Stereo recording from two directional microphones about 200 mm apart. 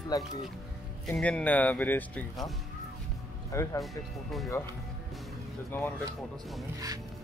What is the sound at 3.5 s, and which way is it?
Speech, 15° left (ahead or behind).